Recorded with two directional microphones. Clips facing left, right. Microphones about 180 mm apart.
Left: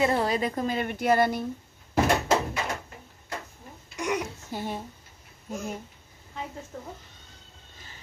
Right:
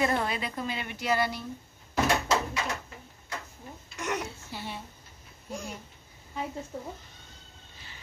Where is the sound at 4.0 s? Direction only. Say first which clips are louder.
Left 4 dB; 10° left (ahead or behind).